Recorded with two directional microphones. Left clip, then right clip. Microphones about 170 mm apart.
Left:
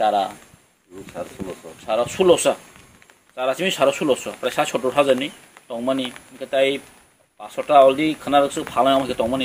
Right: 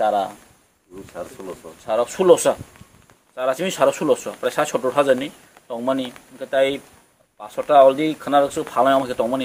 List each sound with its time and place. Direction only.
0.0 s speech: 15° right (ahead or behind)
1.4 s speech: 5° right (ahead or behind)
1.9 s speech: 15° right (ahead or behind)